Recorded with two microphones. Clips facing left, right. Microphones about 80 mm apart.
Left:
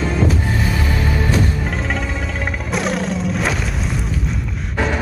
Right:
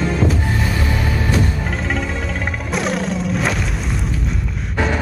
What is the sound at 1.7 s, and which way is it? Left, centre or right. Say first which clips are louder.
Music: even; centre.